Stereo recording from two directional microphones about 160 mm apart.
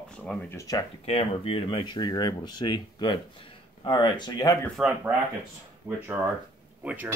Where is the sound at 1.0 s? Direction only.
35° left (ahead or behind).